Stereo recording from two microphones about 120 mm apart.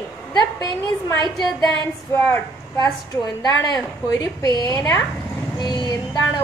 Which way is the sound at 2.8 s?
35° left (ahead or behind).